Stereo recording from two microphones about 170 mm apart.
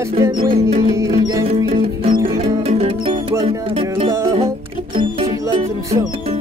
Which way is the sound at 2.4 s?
40° right (ahead or behind).